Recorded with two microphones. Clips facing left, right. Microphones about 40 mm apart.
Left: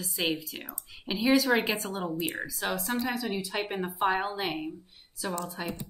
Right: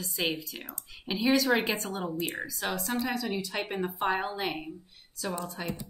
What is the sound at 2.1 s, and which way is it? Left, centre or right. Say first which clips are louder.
Speech: left 1 dB; centre.